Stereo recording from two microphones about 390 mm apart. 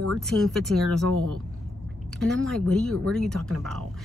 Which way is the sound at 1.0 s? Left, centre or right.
Right.